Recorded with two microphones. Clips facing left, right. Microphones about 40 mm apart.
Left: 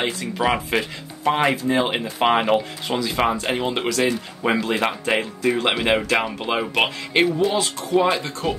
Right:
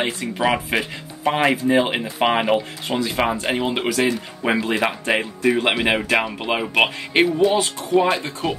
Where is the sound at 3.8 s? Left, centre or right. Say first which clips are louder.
Right 1 dB; right.